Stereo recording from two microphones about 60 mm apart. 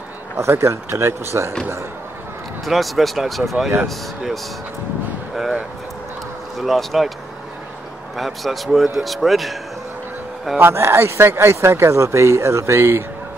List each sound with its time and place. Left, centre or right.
0.4 s speech: right
2.6 s a man's voice: centre
5.3 s a sound: centre
6.6 s a man's voice: centre
8.2 s a man's voice: centre
10.6 s speech: right